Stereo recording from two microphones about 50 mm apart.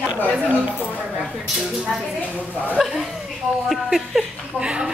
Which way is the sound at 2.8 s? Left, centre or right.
Centre.